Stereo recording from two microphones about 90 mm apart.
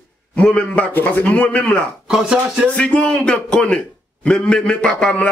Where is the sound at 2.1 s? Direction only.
10° right (ahead or behind).